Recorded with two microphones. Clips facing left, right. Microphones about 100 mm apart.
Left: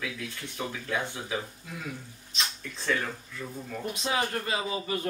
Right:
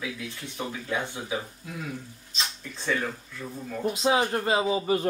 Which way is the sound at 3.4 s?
5° left (ahead or behind).